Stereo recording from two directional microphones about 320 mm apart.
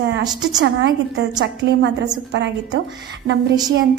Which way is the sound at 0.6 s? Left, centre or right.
Right.